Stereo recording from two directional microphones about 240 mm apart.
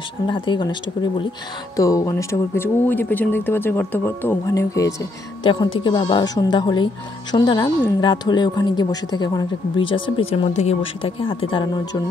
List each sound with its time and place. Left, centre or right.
0.3 s speech: centre
1.8 s speech: centre